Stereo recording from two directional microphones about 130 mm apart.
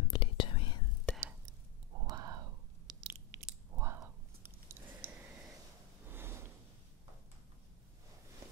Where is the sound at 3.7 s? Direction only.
20° right (ahead or behind).